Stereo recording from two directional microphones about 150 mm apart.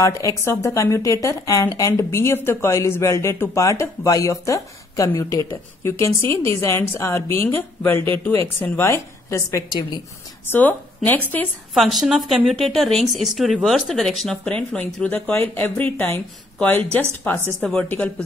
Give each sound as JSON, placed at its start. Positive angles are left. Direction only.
{"t": 0.0, "sound": "a woman's voice", "side_deg": 20}
{"t": 9.7, "sound": "a woman's voice", "side_deg": 30}
{"t": 10.4, "sound": "a woman's voice", "side_deg": 10}
{"t": 11.7, "sound": "a woman's voice", "side_deg": 0}